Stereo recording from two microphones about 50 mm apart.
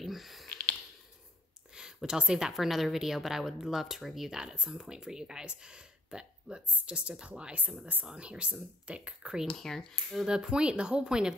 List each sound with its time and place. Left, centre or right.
0.0 s a sound: centre
1.8 s speech: centre
2.5 s speech: centre
9.6 s speech: centre
10.2 s speech: centre